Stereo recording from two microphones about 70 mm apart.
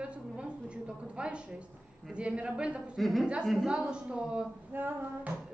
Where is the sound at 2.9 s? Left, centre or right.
Centre.